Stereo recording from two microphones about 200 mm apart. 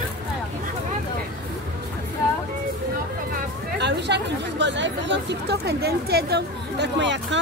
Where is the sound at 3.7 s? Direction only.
60° right (ahead or behind).